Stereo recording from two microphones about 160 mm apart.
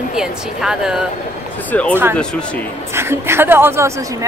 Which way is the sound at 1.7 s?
10° left (ahead or behind).